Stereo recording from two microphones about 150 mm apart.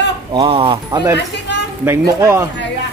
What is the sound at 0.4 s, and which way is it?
Speech, 40° right (ahead or behind).